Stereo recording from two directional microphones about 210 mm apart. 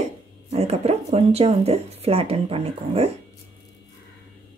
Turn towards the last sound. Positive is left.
turn(degrees=-30)  # may be behind; listen again after turning